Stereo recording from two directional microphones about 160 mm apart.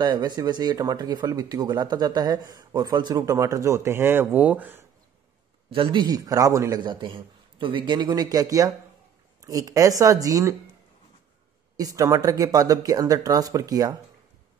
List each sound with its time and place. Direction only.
0.0 s speech: 25° right (ahead or behind); by 4.8 s 10° right (ahead or behind)
5.7 s speech: 35° right (ahead or behind)
11.7 s speech: 20° right (ahead or behind)